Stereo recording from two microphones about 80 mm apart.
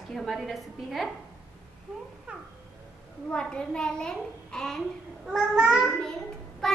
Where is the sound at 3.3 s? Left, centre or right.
Centre.